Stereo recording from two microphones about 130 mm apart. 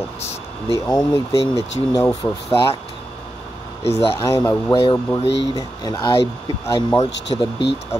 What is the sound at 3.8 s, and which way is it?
Speech, 50° left (ahead or behind).